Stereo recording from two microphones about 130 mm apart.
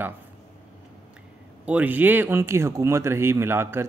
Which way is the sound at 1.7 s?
10° right (ahead or behind).